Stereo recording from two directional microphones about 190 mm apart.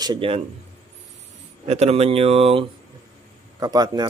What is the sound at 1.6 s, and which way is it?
Speech, 35° right (ahead or behind).